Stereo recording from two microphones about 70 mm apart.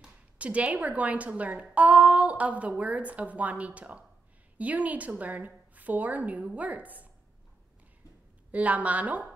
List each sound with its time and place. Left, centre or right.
0.0 s speech: centre
8.5 s speech: right